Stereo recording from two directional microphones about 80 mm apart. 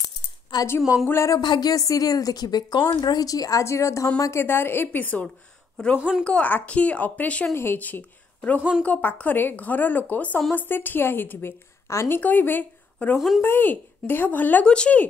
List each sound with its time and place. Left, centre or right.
0.7 s a woman's voice: left
1.4 s a woman's voice: left; by 5.3 s centre
5.9 s speech: centre
6.2 s a woman's voice: centre
11.9 s a woman's voice: left
12.2 s speech: left